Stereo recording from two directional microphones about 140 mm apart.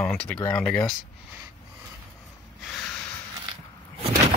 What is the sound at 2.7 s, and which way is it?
Snort, 5° left (ahead or behind).